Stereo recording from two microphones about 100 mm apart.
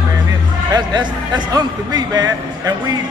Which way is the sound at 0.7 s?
45° right (ahead or behind).